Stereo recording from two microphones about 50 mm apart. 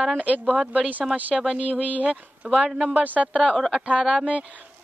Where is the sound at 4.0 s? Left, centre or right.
Centre.